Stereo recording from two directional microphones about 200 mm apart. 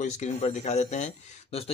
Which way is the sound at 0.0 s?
35° left (ahead or behind).